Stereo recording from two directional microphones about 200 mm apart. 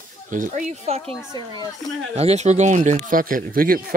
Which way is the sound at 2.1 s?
30° right (ahead or behind).